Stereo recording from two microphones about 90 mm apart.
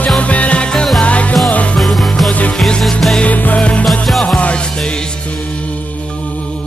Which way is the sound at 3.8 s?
5° left (ahead or behind).